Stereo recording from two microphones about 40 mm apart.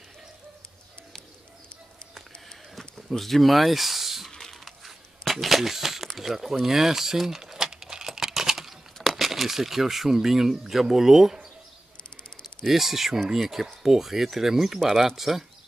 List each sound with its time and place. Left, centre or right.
2.7 s a sound: centre
4.3 s typing: centre
5.3 s a sound: centre
6.6 s typing: centre
8.9 s speech: centre
12.4 s speech: centre